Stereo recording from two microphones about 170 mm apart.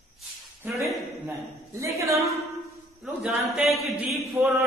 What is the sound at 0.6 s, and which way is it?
Speech, 10° right (ahead or behind).